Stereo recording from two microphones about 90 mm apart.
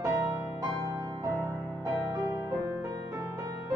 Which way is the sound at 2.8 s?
35° right (ahead or behind).